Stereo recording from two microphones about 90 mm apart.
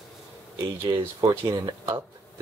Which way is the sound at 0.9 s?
40° right (ahead or behind).